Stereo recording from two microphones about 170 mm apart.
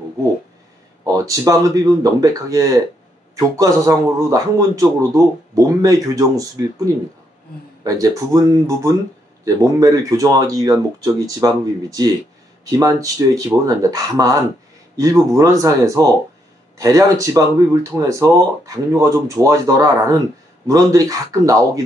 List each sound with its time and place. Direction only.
1.0 s speech: 20° right (ahead or behind)
8.3 s speech: 20° right (ahead or behind)